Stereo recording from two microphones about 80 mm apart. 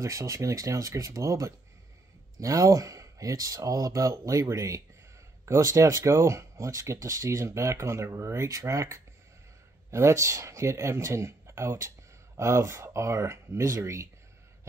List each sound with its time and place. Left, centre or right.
0.0 s speech: right